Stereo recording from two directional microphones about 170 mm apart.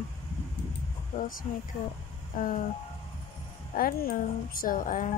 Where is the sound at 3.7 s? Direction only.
55° left (ahead or behind).